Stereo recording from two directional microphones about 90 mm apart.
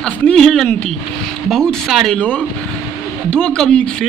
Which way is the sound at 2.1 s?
15° left (ahead or behind).